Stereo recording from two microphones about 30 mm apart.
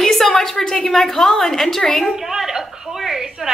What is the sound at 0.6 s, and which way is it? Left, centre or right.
A woman's voice, centre.